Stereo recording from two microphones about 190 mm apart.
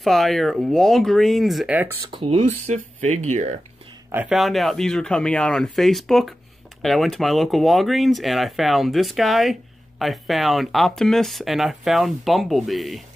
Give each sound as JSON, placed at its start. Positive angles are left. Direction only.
{"t": 0.0, "sound": "speech", "side_deg": 0}
{"t": 2.0, "sound": "speech", "side_deg": -25}
{"t": 4.1, "sound": "speech", "side_deg": -5}